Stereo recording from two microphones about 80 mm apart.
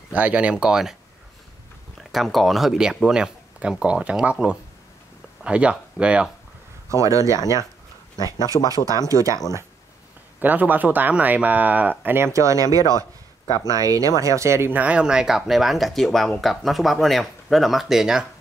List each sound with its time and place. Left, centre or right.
0.1 s speech: centre
2.1 s speech: centre
6.9 s speech: right
8.6 s speech: right
10.4 s speech: right
12.3 s speech: right
13.5 s speech: left
13.7 s speech: right
14.7 s speech: centre